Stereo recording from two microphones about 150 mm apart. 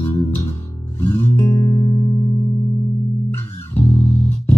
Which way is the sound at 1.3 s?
20° left (ahead or behind).